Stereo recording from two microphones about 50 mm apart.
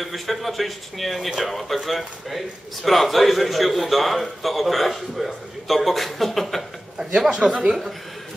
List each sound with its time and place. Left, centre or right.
0.0 s a man's voice: centre
7.2 s speech: centre